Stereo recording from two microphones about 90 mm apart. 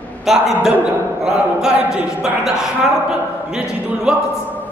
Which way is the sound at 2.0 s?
5° right (ahead or behind).